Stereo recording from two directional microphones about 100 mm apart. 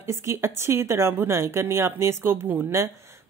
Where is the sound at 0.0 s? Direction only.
25° right (ahead or behind).